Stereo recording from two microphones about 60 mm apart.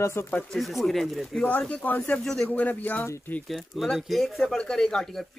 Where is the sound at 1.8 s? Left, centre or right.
Left.